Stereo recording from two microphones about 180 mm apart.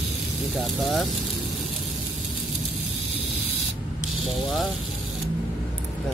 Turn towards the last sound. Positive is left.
turn(degrees=0)  # may be behind; listen again after turning